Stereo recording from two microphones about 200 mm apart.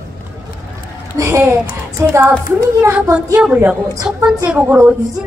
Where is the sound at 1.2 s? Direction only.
15° right (ahead or behind).